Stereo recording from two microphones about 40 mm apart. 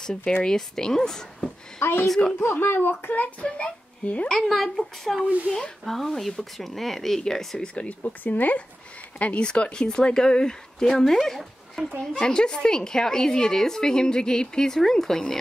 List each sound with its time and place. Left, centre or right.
0.6 s a woman's voice: centre
1.8 s speech: left
2.0 s a woman's voice: centre
2.4 s speech: left
3.4 s a woman's voice: left
4.5 s speech: centre
5.5 s a woman's voice: centre
5.9 s speech: centre
7.2 s a woman's voice: centre
8.0 s speech: left
9.2 s speech: left; by 11.8 s centre
12.0 s a woman's voice: centre